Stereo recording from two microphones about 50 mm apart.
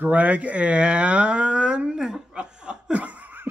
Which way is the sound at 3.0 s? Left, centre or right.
Right.